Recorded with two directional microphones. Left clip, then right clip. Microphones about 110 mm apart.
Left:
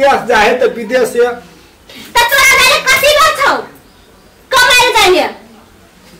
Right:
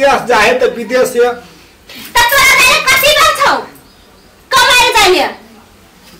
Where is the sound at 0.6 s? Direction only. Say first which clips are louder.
Even; 5° left (ahead or behind).